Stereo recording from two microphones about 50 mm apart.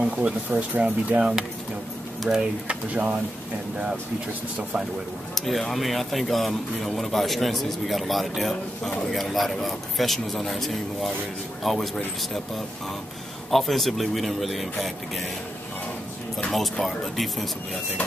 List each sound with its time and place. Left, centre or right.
0.0 s speech: right
2.7 s speech: right
5.3 s speech: centre
13.5 s speech: centre
16.8 s speech: centre